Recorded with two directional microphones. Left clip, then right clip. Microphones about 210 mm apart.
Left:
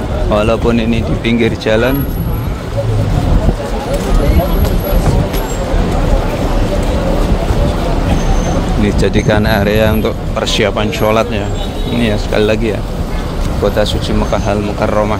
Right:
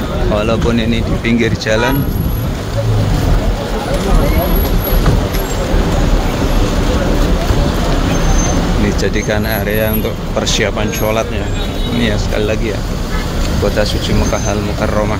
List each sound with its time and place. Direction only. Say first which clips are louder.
0.3 s speech: left 3 dB; 15° left (ahead or behind)
8.8 s speech: left 5 dB; 15° left (ahead or behind)
14.3 s speech: left 2 dB; 15° left (ahead or behind)